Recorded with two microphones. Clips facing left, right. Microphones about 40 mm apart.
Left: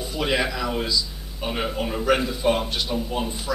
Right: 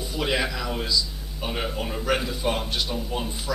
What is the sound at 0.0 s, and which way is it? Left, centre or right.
Speech, centre.